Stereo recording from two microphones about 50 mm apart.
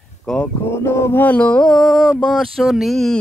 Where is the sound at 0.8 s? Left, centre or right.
Left.